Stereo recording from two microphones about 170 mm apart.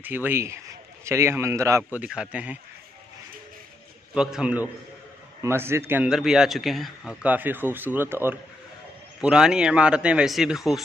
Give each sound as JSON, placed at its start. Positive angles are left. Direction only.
{"t": 0.0, "sound": "speech", "side_deg": -10}
{"t": 2.0, "sound": "speech", "side_deg": -5}
{"t": 4.1, "sound": "a man's voice", "side_deg": -5}